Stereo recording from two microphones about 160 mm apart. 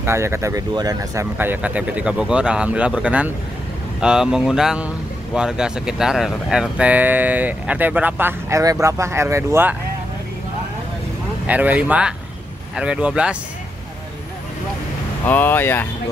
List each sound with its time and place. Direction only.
0.0 s speech: 15° right (ahead or behind)
1.4 s speech: 10° right (ahead or behind)
11.4 s speech: 10° right (ahead or behind)
15.2 s speech: 10° left (ahead or behind)